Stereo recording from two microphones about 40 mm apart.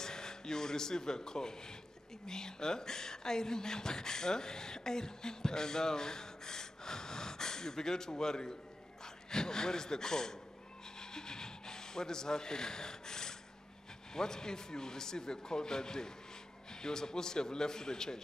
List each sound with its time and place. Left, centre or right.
0.0 s a man's voice: centre
11.0 s a sound: centre
14.1 s speech: centre